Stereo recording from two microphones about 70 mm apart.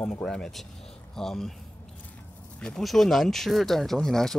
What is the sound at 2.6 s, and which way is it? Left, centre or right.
Speech, centre.